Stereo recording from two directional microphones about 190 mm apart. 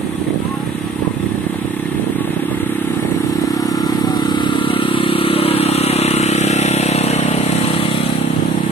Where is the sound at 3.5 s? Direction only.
20° left (ahead or behind).